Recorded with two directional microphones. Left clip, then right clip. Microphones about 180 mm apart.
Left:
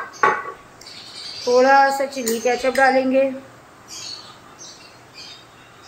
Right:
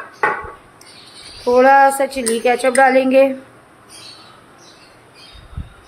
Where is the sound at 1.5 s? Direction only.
50° right (ahead or behind).